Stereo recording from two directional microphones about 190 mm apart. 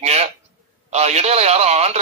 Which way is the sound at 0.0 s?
35° right (ahead or behind).